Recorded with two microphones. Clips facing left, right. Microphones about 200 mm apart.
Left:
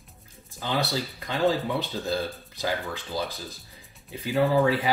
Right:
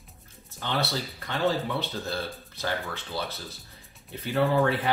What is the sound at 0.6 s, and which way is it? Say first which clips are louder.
Speech: left 2 dB; 15° left (ahead or behind).